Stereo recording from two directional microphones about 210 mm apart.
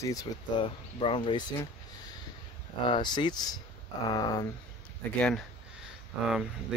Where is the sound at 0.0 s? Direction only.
15° left (ahead or behind).